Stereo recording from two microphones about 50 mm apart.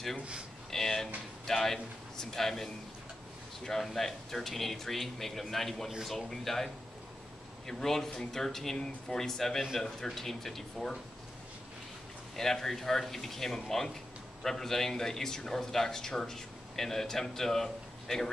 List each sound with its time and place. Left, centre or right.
0.2 s speech: centre
0.7 s a man's voice: centre
12.4 s a man's voice: centre